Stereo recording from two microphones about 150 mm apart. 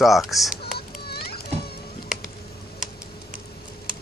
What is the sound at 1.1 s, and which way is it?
Music, 90° left.